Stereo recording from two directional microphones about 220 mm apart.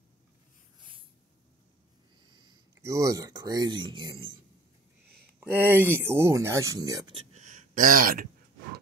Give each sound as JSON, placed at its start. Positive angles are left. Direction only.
{"t": 0.7, "sound": "snort", "side_deg": -20}
{"t": 2.2, "sound": "speech", "side_deg": -20}
{"t": 5.5, "sound": "speech", "side_deg": -10}
{"t": 7.3, "sound": "a sound", "side_deg": -35}